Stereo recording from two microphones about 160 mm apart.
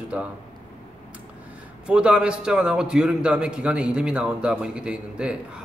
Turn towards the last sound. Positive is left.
turn(degrees=-5)  # may be behind; listen again after turning